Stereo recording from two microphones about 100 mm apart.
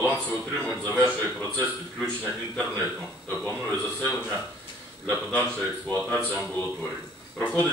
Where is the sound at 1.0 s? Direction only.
15° left (ahead or behind).